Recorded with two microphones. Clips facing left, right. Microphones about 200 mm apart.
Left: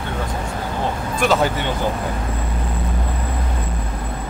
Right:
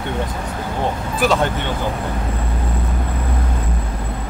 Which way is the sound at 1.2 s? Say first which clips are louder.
Even; centre (ahead or behind).